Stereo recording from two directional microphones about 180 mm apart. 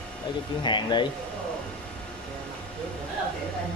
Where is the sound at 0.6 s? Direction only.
25° left (ahead or behind).